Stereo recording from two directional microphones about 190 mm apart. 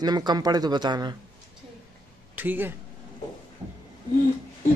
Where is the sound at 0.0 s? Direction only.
20° right (ahead or behind).